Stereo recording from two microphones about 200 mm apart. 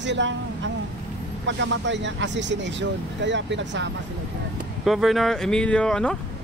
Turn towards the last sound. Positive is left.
turn(degrees=5)  # may be behind; listen again after turning